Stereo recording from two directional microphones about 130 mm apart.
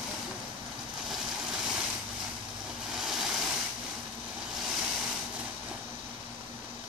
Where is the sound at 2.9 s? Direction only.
5° right (ahead or behind).